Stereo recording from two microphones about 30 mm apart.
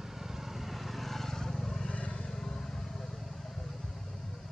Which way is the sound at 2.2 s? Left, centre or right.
Centre.